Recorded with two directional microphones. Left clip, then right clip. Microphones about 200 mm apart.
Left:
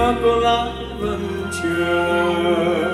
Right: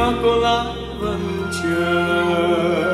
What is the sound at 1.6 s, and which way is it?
Music, centre (ahead or behind).